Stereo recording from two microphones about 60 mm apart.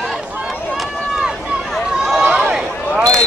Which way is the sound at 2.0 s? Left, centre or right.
Centre.